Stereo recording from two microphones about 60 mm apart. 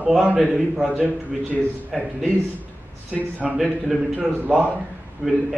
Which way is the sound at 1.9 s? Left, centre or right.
Centre.